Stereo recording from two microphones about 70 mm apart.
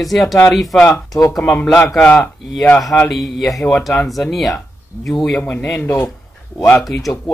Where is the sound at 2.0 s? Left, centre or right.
Left.